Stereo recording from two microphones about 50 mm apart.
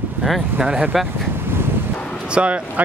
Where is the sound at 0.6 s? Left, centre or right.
Centre.